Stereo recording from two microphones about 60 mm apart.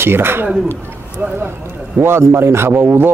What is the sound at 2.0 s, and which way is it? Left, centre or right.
Speech, right.